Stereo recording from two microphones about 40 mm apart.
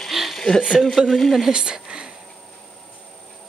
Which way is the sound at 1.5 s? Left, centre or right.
Right.